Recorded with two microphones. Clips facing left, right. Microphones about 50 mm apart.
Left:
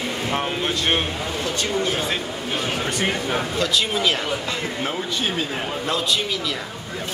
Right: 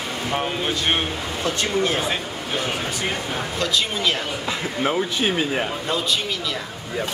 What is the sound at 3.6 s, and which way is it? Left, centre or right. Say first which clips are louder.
Speech: even; centre.